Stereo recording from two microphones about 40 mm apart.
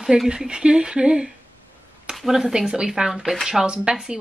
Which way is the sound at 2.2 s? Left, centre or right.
Centre.